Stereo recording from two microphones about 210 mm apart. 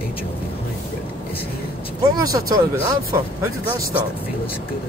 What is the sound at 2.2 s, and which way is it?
Speech, 15° right (ahead or behind).